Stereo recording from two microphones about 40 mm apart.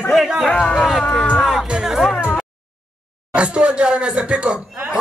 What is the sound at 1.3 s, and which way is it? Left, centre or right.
Music, centre.